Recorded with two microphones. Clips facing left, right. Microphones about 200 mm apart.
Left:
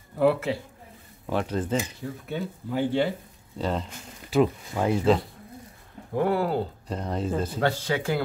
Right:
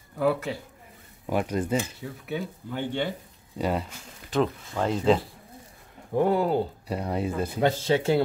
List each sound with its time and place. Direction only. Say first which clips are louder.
0.2 s speech: left 3 dB; centre (ahead or behind)
1.2 s speech: right 1 dB; 10° right (ahead or behind)
3.5 s speech: right 1 dB; 10° right (ahead or behind)
4.3 s speech: left 3 dB; 10° left (ahead or behind)
6.1 s speech: right 2 dB; 20° right (ahead or behind)
7.8 s speech: right 4 dB; 25° right (ahead or behind)